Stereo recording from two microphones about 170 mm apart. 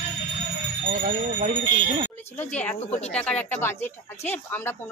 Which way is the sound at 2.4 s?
10° left (ahead or behind).